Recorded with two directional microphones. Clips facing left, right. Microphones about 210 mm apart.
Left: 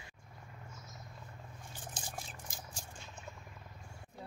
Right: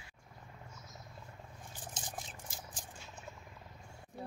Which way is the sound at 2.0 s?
20° right (ahead or behind).